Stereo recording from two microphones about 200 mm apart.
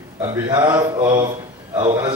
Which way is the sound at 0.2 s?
20° right (ahead or behind).